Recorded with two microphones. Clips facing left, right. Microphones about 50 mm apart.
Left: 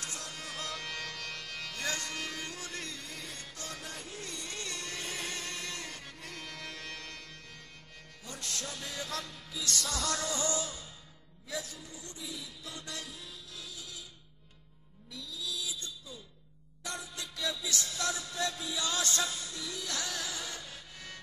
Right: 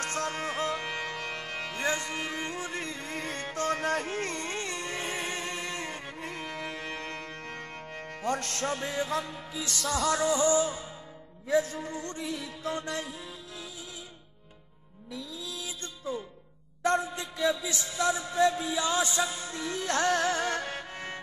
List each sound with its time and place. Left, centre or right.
0.0 s music: right
8.9 s music: right
9.7 s music: centre
9.9 s music: centre
11.4 s music: right
12.2 s music: right
12.6 s music: right
15.1 s music: right
16.8 s a sound: right; by 19.4 s centre
19.4 s music: right